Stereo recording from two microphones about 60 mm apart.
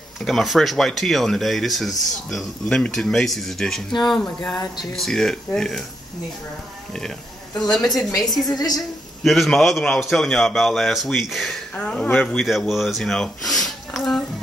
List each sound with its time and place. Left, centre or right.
0.2 s speech: centre
6.9 s speech: centre
8.5 s a woman's voice: left
9.2 s speech: centre
11.7 s speech: centre
12.4 s speech: centre